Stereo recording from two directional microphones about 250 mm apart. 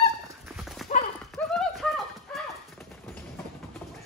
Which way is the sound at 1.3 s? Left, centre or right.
Centre.